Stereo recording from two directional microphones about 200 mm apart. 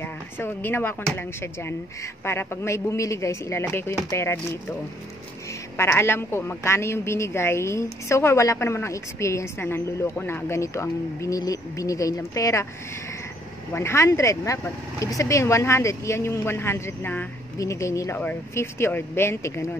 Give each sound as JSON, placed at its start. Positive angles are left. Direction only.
{"t": 0.0, "sound": "a woman's voice", "side_deg": 10}
{"t": 13.7, "sound": "a woman's voice", "side_deg": 15}